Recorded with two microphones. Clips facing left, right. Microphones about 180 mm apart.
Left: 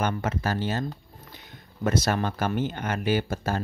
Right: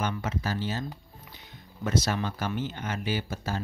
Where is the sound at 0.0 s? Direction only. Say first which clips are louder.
Left 4 dB; 55° left (ahead or behind).